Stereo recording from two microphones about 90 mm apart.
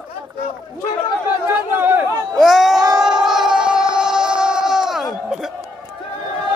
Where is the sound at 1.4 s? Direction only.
25° right (ahead or behind).